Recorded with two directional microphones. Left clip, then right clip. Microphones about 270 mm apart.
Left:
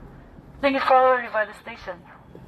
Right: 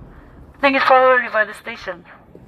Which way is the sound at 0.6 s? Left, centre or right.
Right.